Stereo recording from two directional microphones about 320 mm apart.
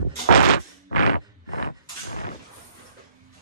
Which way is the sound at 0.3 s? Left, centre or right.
Left.